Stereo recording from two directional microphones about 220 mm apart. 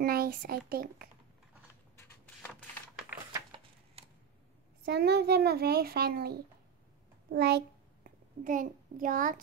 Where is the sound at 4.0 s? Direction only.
25° right (ahead or behind).